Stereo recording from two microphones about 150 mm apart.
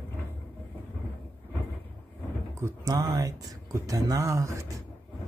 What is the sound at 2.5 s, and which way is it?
Speech, 20° right (ahead or behind).